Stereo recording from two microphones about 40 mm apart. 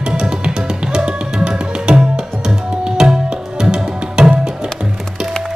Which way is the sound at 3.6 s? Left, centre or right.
Centre.